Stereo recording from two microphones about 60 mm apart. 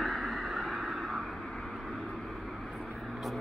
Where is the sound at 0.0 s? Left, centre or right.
Centre.